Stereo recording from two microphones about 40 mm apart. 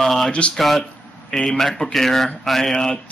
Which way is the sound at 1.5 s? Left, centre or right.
Centre.